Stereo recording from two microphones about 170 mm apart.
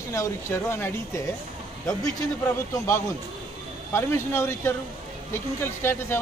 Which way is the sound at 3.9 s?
15° left (ahead or behind).